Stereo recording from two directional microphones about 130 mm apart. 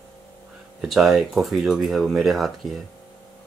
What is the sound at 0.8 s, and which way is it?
Speech, 5° right (ahead or behind).